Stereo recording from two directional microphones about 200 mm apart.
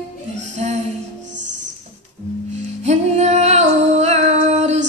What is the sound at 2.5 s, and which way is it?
Music, 35° right (ahead or behind).